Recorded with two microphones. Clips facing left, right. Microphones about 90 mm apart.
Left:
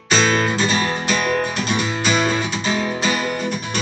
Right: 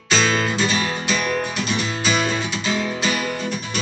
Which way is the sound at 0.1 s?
35° left (ahead or behind).